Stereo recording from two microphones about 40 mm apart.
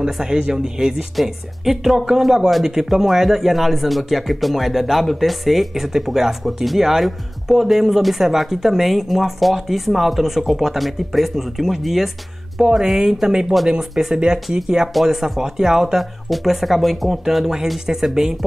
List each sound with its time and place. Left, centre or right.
0.0 s speech: centre
1.1 s speech: centre
15.0 s speech: centre